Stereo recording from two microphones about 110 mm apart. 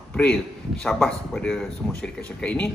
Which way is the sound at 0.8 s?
5° left (ahead or behind).